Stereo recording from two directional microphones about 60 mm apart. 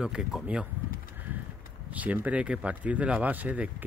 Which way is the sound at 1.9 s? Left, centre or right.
Right.